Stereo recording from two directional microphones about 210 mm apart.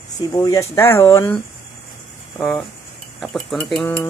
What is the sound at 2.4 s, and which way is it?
Speech, centre (ahead or behind).